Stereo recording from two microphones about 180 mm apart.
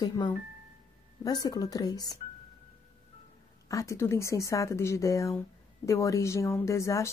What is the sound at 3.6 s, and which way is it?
Speech, 15° left (ahead or behind).